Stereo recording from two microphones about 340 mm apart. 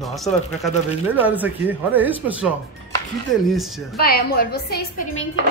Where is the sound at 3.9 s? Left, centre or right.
Left.